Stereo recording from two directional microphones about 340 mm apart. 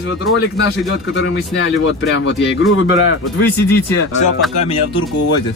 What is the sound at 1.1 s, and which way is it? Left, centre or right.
Speech, left.